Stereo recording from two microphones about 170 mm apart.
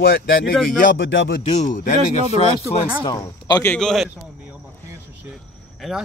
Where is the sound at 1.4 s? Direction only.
45° left (ahead or behind).